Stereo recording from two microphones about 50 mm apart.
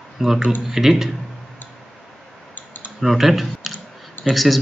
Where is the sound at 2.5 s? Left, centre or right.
Left.